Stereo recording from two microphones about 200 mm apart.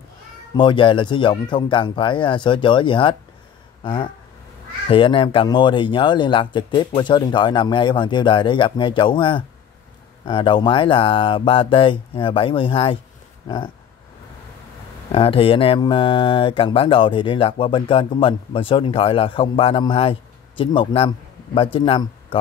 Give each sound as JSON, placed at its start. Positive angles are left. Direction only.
{"t": 0.6, "sound": "speech", "side_deg": 25}
{"t": 15.1, "sound": "speech", "side_deg": 25}